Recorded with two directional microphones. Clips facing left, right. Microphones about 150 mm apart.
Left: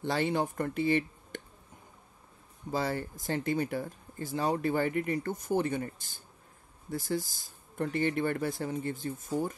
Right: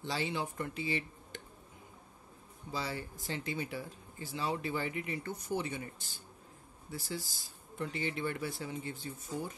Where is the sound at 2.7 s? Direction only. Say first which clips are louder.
Left 7 dB; 50° left (ahead or behind).